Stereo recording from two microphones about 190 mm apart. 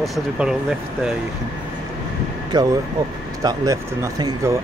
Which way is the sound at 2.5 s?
20° right (ahead or behind).